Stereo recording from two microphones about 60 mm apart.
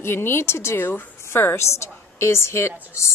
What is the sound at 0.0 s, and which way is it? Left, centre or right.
A woman's voice, left.